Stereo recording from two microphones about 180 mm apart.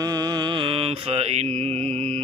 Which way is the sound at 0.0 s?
20° right (ahead or behind).